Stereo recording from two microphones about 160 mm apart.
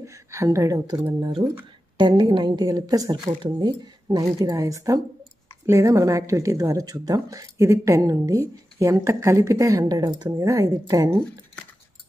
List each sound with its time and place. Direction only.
0.0 s speech: 20° right (ahead or behind)